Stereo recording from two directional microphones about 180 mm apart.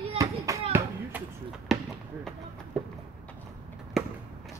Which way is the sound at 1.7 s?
Centre (ahead or behind).